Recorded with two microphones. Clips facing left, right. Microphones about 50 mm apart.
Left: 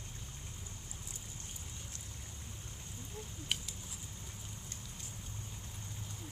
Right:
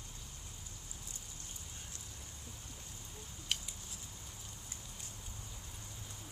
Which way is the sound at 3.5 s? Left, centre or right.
Centre.